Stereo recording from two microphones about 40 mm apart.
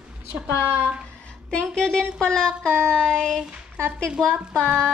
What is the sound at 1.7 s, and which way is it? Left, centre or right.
Child singing, centre.